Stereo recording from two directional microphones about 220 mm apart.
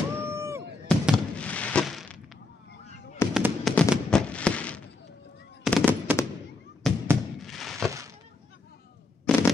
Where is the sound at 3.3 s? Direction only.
Centre (ahead or behind).